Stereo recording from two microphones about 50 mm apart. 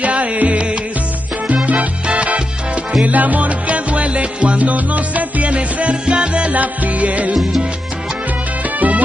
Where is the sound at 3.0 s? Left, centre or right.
Right.